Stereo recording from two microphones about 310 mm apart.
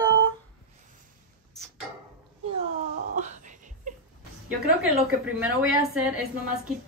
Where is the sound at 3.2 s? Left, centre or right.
Right.